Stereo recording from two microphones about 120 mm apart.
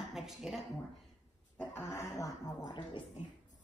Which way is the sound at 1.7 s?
25° left (ahead or behind).